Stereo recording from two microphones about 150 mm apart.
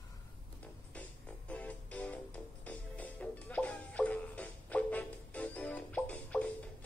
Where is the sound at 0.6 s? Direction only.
10° left (ahead or behind).